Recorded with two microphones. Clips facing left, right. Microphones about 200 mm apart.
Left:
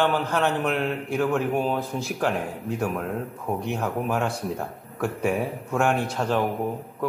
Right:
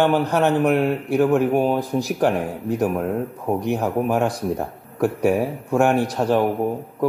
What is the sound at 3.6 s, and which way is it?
A man's voice, 15° right (ahead or behind).